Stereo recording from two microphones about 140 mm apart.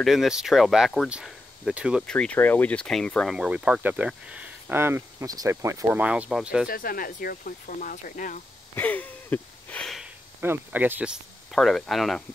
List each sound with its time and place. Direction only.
0.0 s speech: centre (ahead or behind)
2.0 s speech: 10° left (ahead or behind)
3.3 s speech: 5° right (ahead or behind)
6.7 s speech: 90° left; by 8.4 s 70° left (ahead or behind)
8.7 s wheeze: 10° left (ahead or behind)
10.4 s speech: 15° right (ahead or behind)
11.5 s speech: centre (ahead or behind)